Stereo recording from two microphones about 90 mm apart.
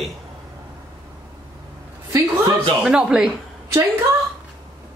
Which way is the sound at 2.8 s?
10° right (ahead or behind).